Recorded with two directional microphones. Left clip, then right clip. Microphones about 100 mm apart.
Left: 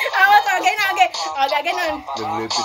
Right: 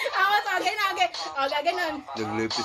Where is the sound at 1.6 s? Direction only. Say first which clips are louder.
Left 5 dB; 25° right (ahead or behind).